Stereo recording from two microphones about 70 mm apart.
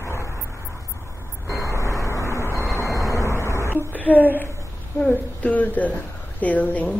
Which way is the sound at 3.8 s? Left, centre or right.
Left.